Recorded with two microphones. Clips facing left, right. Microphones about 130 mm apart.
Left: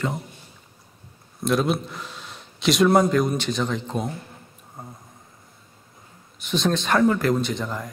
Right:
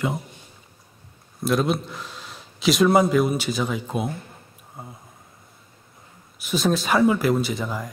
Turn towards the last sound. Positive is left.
turn(degrees=-5)  # may be behind; listen again after turning